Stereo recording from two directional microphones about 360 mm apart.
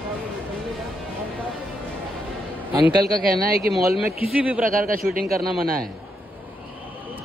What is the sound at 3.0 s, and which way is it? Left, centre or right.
Speech, right.